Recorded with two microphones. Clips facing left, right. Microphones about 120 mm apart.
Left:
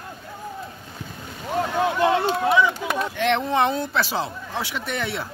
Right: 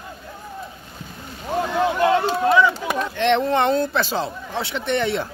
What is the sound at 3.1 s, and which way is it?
Speech, 5° left (ahead or behind).